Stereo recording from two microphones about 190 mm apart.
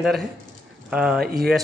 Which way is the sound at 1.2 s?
55° right (ahead or behind).